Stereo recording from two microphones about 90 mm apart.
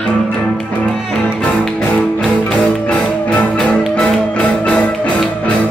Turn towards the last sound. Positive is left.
turn(degrees=15)  # may be behind; listen again after turning